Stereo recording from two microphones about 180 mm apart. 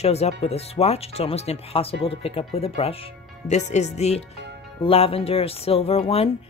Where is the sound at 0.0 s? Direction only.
35° left (ahead or behind).